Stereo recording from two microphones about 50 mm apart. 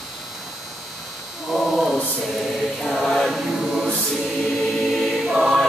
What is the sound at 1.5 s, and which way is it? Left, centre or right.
Chant, centre.